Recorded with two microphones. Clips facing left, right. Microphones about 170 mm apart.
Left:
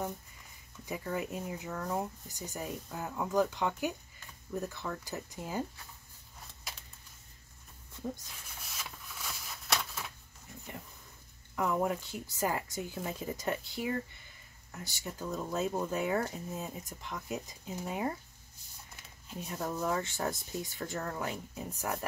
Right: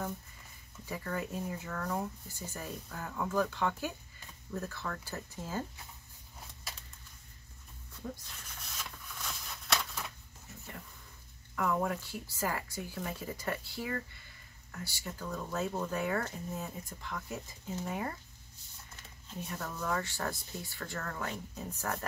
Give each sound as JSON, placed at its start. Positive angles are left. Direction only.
{"t": 0.8, "sound": "speech", "side_deg": 15}
{"t": 8.3, "sound": "a sound", "side_deg": 5}
{"t": 11.5, "sound": "speech", "side_deg": 20}
{"t": 19.2, "sound": "speech", "side_deg": 20}